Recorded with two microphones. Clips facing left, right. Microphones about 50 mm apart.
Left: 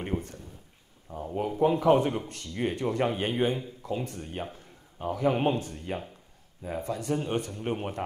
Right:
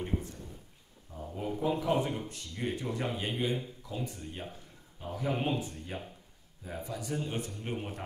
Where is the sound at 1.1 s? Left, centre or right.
Left.